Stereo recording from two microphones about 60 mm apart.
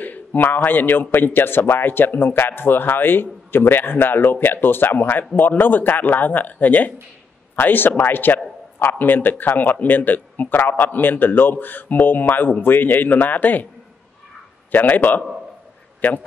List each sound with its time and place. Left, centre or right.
0.0 s a man's voice: left
14.7 s speech: left
16.0 s speech: centre